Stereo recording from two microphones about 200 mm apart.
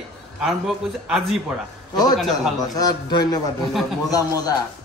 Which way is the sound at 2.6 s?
20° left (ahead or behind).